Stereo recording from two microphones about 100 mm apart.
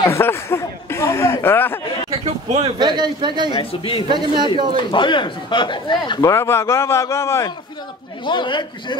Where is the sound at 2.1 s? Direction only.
85° right.